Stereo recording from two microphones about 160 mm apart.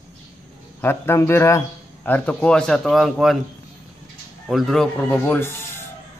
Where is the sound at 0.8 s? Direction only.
15° left (ahead or behind); by 3.4 s centre (ahead or behind).